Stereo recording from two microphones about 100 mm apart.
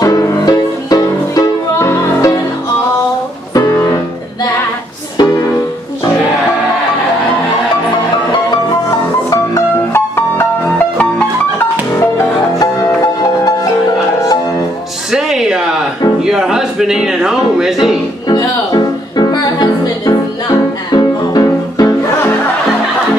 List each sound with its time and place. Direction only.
0.0 s music: 35° left (ahead or behind)
3.5 s music: 30° left (ahead or behind)
9.9 s music: 25° left (ahead or behind)
12.5 s music: 40° left (ahead or behind)
15.0 s music: 5° right (ahead or behind)
16.3 s a sound: 5° right (ahead or behind)
18.3 s music: 40° left (ahead or behind)